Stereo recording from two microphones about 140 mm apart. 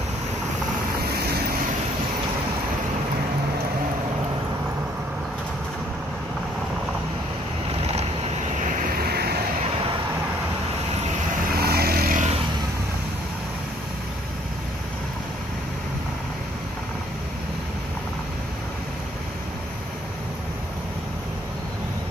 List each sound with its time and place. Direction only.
11.6 s vehicle: 90° right